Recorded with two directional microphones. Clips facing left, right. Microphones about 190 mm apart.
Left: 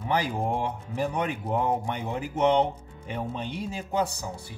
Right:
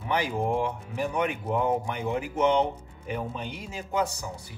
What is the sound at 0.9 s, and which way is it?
A man's voice, 35° left (ahead or behind).